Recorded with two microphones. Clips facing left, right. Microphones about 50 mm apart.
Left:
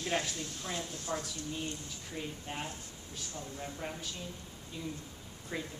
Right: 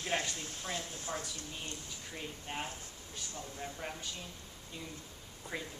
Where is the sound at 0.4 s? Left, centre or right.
Right.